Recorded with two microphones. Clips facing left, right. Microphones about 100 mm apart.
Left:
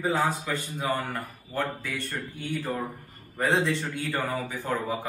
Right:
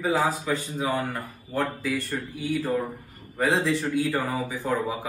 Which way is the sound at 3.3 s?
10° right (ahead or behind).